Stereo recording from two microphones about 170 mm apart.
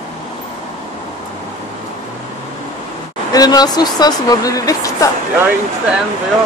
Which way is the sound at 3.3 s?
20° left (ahead or behind).